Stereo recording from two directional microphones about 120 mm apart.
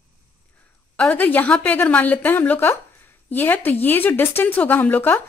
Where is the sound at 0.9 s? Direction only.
10° left (ahead or behind).